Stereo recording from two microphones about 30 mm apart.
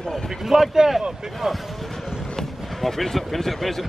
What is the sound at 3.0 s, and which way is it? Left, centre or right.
Speech, centre.